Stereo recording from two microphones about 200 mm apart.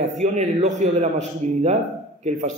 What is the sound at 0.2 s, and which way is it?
A man's voice, 35° right (ahead or behind).